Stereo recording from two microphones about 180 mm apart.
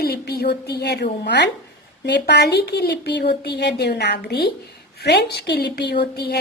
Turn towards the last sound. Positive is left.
turn(degrees=65)  # may be behind; listen again after turning